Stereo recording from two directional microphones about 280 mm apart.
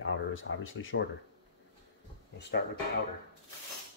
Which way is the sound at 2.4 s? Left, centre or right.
Left.